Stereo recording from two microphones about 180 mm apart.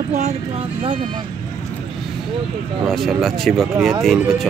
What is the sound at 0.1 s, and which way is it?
Speech, 35° right (ahead or behind).